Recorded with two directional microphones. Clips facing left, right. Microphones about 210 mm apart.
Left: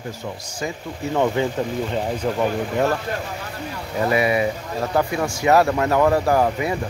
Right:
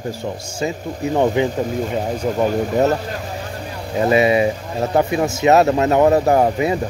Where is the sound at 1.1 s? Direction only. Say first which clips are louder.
Right 3 dB; 15° right (ahead or behind).